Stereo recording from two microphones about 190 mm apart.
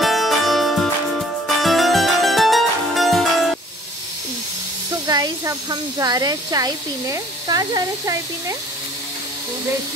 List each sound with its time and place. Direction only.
0.0 s music: centre (ahead or behind)
5.0 s speech: 20° right (ahead or behind)